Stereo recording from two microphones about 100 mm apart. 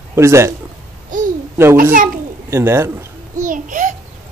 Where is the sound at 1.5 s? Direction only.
25° right (ahead or behind).